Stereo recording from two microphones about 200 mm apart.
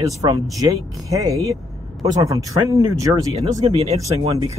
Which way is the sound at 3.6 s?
30° right (ahead or behind).